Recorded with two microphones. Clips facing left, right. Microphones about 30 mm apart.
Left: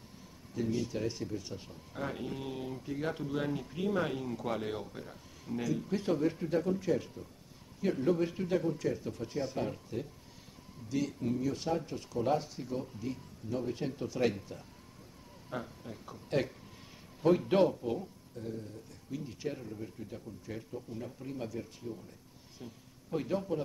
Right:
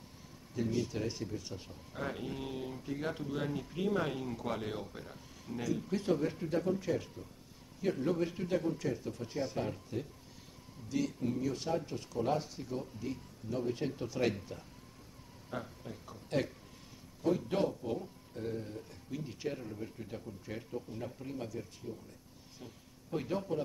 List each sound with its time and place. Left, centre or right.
0.6 s speech: centre
17.2 s a man's voice: left
17.6 s speech: centre
18.3 s speech: right
19.0 s speech: centre
23.1 s speech: centre